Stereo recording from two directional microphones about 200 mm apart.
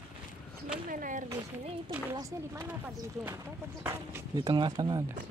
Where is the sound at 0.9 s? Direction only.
40° right (ahead or behind).